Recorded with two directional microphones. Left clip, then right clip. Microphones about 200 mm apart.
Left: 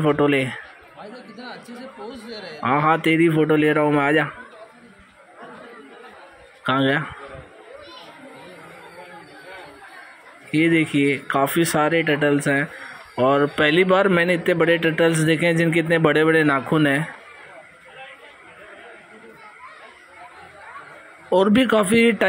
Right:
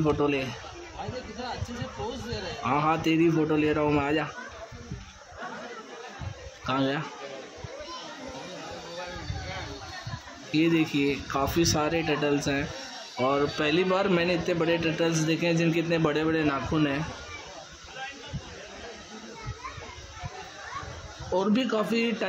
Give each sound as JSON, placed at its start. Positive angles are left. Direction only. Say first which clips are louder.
{"t": 0.0, "sound": "a man's voice", "louder": "left 7 dB", "side_deg": 25}
{"t": 2.6, "sound": "a man's voice", "louder": "left 7 dB", "side_deg": 20}
{"t": 6.6, "sound": "a man's voice", "louder": "left 8 dB", "side_deg": 20}
{"t": 10.5, "sound": "a man's voice", "louder": "left 6 dB", "side_deg": 20}
{"t": 21.3, "sound": "a man's voice", "louder": "left 10 dB", "side_deg": 30}